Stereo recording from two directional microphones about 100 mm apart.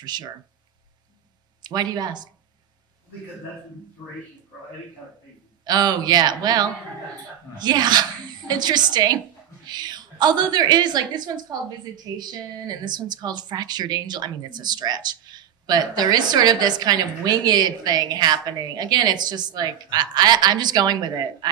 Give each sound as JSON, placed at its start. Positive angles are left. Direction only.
{"t": 0.0, "sound": "speech", "side_deg": -45}
{"t": 1.6, "sound": "speech", "side_deg": -45}
{"t": 5.7, "sound": "speech", "side_deg": -45}